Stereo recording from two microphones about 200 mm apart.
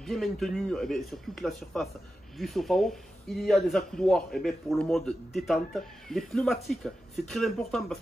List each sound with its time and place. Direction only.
0.0 s speech: centre (ahead or behind)